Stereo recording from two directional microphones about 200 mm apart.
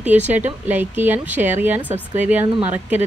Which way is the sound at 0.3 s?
10° right (ahead or behind).